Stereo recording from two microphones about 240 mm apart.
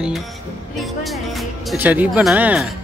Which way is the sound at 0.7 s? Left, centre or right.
Centre.